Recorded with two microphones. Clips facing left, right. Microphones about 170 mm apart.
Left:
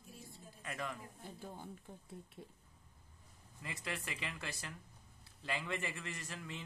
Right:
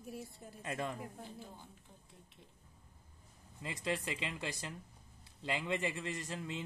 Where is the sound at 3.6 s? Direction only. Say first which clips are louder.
Right 6 dB; 25° right (ahead or behind).